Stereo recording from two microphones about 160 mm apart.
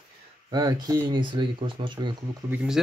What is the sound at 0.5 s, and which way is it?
Speech, 25° right (ahead or behind).